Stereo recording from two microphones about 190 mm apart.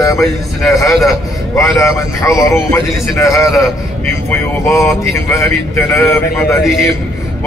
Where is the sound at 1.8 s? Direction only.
15° left (ahead or behind).